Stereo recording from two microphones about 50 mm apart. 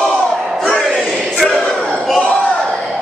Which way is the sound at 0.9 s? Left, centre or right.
Centre.